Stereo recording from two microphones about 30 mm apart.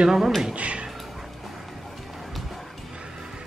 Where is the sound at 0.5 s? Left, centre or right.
Right.